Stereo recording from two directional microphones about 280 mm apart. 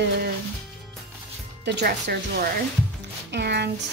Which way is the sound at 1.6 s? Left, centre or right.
Right.